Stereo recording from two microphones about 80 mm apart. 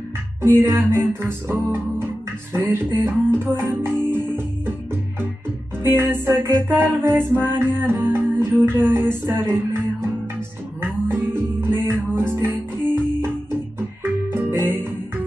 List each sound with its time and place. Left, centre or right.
0.4 s music: right
5.9 s music: right
14.3 s music: right